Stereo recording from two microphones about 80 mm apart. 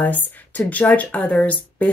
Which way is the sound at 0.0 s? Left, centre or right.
Left.